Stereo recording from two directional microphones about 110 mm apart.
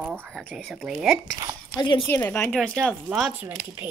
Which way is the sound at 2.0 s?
20° left (ahead or behind).